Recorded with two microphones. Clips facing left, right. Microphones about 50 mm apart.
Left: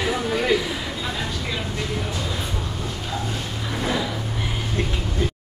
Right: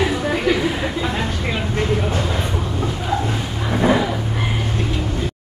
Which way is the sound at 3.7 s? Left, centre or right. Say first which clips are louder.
Right 8 dB; right.